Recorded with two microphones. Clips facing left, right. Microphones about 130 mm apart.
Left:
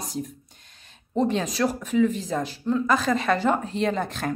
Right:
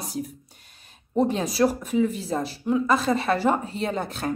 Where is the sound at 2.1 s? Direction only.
5° right (ahead or behind).